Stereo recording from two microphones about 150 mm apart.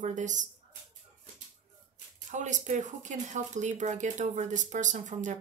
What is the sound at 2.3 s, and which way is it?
Speech, 55° right (ahead or behind).